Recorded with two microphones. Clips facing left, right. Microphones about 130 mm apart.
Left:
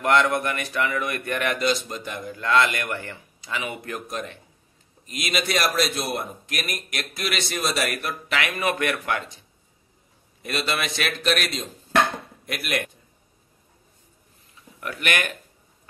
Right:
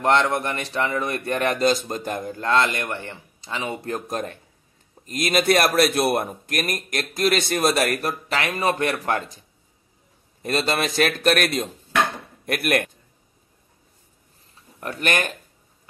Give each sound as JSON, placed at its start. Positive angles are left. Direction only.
{"t": 0.0, "sound": "a man's voice", "side_deg": -30}
{"t": 5.0, "sound": "a man's voice", "side_deg": -45}
{"t": 10.4, "sound": "a man's voice", "side_deg": -35}
{"t": 14.5, "sound": "a sound", "side_deg": -35}